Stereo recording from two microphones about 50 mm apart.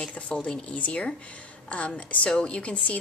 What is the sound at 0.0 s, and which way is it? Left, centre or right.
Chopping, centre.